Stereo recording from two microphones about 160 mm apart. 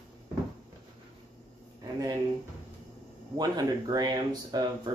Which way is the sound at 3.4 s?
25° right (ahead or behind).